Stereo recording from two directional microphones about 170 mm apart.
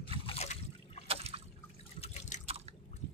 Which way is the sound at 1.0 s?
35° right (ahead or behind).